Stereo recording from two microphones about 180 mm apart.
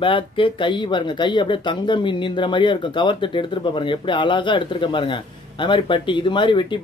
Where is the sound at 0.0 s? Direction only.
30° left (ahead or behind).